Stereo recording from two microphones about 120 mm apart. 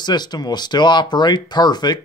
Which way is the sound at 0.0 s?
35° left (ahead or behind).